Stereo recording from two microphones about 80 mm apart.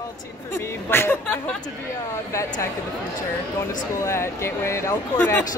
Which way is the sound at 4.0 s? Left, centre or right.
Left.